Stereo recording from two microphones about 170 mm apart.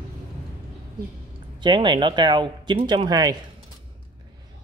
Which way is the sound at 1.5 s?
25° right (ahead or behind).